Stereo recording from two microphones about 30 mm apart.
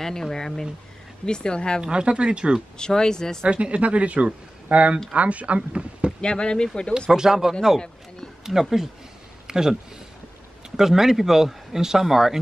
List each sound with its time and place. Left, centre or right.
0.0 s speech: centre
1.2 s speech: left
1.8 s speech: right
2.8 s speech: left
3.4 s speech: right
5.7 s speech: right
6.2 s speech: left
7.1 s speech: centre
10.8 s speech: centre